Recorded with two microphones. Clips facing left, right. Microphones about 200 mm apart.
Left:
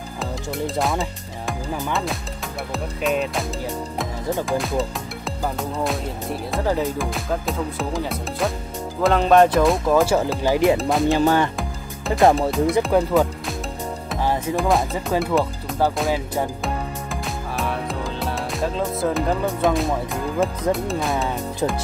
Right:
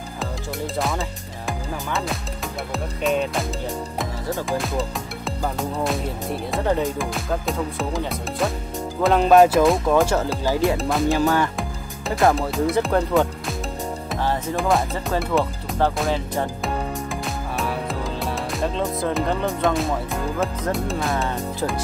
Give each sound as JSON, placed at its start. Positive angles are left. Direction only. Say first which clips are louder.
{"t": 0.7, "sound": "speech", "louder": "left 1 dB", "side_deg": 0}
{"t": 6.5, "sound": "speech", "louder": "even", "side_deg": 0}
{"t": 10.4, "sound": "music", "louder": "left 5 dB", "side_deg": 20}
{"t": 10.8, "sound": "speech", "louder": "left 2 dB", "side_deg": 0}
{"t": 11.1, "sound": "music", "louder": "left 2 dB", "side_deg": 25}
{"t": 12.4, "sound": "speech", "louder": "left 2 dB", "side_deg": 0}
{"t": 14.5, "sound": "music", "louder": "left 1 dB", "side_deg": 0}
{"t": 20.7, "sound": "speech", "louder": "left 1 dB", "side_deg": 0}